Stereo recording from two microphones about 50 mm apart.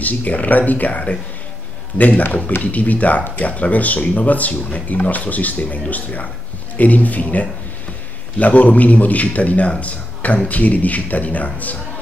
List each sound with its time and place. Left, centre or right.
0.0 s a man's voice: left